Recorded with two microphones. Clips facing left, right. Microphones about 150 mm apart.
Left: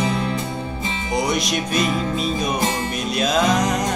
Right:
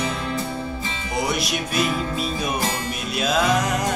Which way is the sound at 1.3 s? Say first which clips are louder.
Left 3 dB; 5° right (ahead or behind).